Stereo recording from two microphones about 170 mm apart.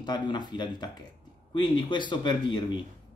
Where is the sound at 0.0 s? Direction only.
25° left (ahead or behind).